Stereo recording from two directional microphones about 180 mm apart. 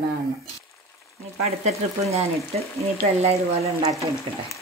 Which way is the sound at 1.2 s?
35° right (ahead or behind).